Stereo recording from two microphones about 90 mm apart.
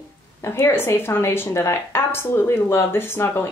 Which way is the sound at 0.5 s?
25° left (ahead or behind).